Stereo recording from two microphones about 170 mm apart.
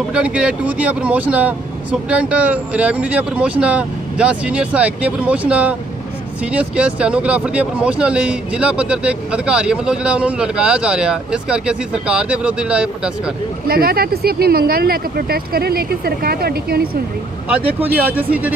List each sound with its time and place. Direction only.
0.1 s speech: 5° right (ahead or behind)
13.7 s speech: 65° right (ahead or behind)
17.5 s speech: 10° right (ahead or behind)